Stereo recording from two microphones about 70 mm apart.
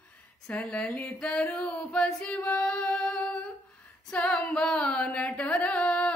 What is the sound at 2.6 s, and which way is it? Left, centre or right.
Music, centre.